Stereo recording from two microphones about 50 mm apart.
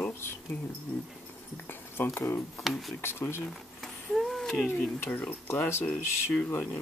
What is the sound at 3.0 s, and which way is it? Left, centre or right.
Speech, left.